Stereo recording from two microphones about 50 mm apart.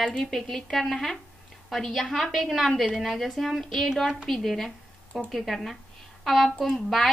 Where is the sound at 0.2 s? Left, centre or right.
Centre.